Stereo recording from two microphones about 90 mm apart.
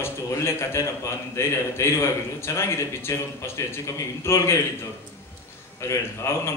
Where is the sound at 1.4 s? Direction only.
30° left (ahead or behind).